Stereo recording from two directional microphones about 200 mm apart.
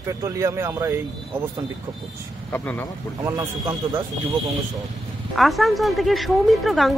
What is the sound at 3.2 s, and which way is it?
Speech, 15° right (ahead or behind).